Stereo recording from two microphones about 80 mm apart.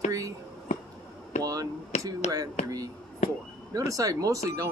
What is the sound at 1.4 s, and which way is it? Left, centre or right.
Speech, right.